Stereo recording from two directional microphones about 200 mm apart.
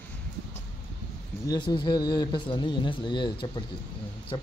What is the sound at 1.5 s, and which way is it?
Speech, 20° left (ahead or behind).